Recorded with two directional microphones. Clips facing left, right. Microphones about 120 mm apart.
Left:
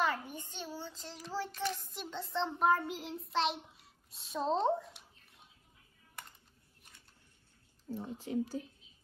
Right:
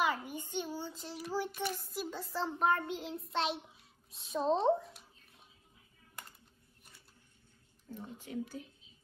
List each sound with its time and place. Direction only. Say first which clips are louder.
0.0 s child singing: right 1 dB; 15° right (ahead or behind)
7.9 s speech: left 6 dB; 35° left (ahead or behind)